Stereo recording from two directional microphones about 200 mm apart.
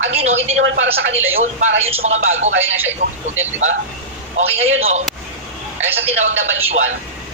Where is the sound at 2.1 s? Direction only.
80° right.